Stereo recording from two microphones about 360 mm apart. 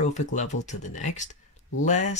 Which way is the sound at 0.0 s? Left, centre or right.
Centre.